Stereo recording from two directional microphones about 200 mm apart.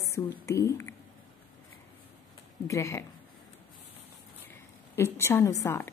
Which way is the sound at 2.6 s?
15° left (ahead or behind).